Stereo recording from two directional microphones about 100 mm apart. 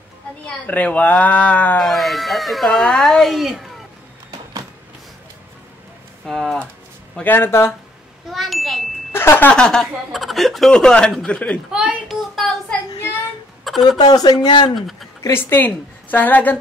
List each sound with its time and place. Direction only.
0.7 s speech: 15° left (ahead or behind)
1.8 s speech: centre (ahead or behind)
6.2 s speech: centre (ahead or behind)
7.2 s speech: 20° left (ahead or behind)
8.3 s ding: centre (ahead or behind)
9.1 s a sound: 25° left (ahead or behind)
9.5 s speech: 5° left (ahead or behind)
11.7 s a child's voice: 10° right (ahead or behind)
12.4 s speech: 5° left (ahead or behind)
13.8 s speech: 40° left (ahead or behind)
14.8 s speech: centre (ahead or behind)
15.3 s speech: 20° left (ahead or behind)